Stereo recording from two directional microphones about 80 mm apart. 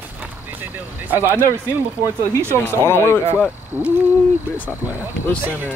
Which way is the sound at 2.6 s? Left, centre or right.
Left.